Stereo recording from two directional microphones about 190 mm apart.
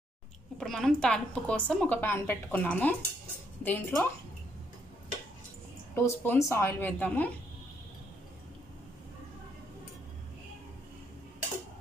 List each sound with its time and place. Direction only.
0.6 s a woman's voice: 5° left (ahead or behind)
5.9 s a woman's voice: 15° left (ahead or behind)